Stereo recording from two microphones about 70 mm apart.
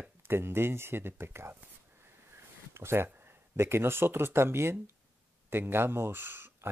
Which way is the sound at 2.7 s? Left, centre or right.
Right.